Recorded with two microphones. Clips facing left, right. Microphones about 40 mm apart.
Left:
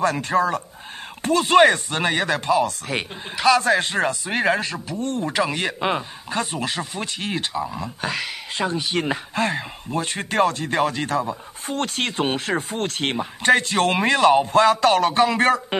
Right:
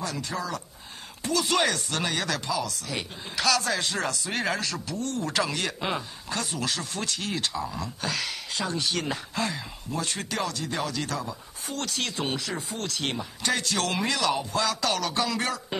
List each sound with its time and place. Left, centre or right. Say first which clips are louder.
0.0 s speech: left 12 dB; left
3.3 s speech: left 8 dB; left
9.4 s speech: left 8 dB; left